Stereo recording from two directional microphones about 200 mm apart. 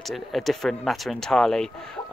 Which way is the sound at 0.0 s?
Centre (ahead or behind).